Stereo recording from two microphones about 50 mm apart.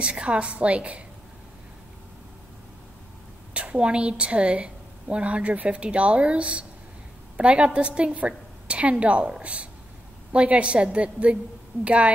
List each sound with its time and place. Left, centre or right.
0.0 s a woman's voice: right
3.5 s a woman's voice: right